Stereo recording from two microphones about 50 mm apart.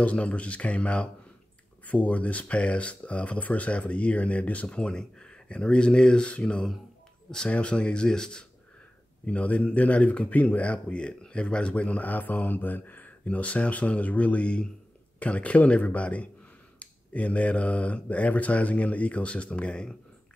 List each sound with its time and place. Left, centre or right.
0.0 s speech: left
9.2 s speech: left
12.1 s speech: left